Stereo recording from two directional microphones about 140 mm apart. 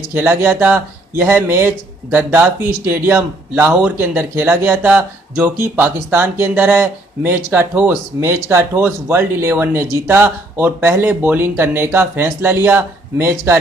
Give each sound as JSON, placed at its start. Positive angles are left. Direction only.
{"t": 0.1, "sound": "speech", "side_deg": -15}